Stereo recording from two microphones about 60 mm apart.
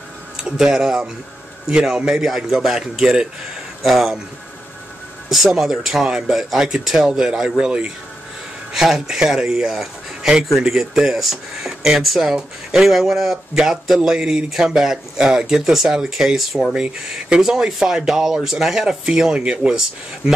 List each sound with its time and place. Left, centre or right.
0.4 s speech: centre
5.3 s speech: centre